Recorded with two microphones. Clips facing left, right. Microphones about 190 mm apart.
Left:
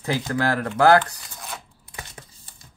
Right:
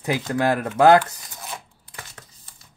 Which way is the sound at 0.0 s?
15° right (ahead or behind).